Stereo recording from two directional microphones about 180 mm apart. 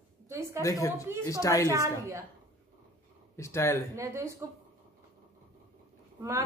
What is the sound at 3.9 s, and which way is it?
Speech, 15° right (ahead or behind).